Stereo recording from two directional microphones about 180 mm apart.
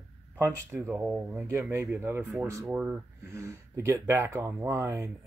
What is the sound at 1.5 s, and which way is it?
Speech, 15° right (ahead or behind).